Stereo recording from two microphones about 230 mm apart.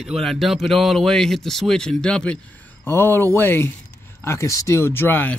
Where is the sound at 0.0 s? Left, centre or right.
Centre.